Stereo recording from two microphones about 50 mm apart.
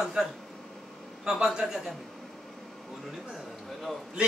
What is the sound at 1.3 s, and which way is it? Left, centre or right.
Speech, centre.